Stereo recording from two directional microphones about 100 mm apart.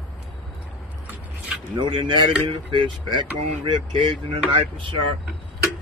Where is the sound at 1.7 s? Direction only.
55° right (ahead or behind).